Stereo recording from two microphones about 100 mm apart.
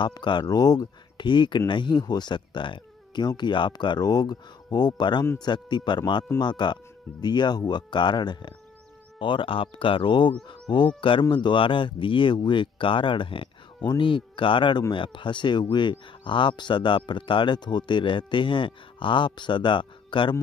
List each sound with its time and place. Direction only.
0.0 s speech: 50° left (ahead or behind)